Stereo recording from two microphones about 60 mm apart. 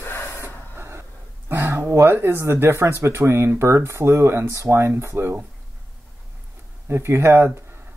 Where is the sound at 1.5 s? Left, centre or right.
Right.